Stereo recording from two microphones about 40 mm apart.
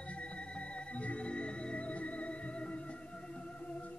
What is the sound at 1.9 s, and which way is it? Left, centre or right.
Music, left.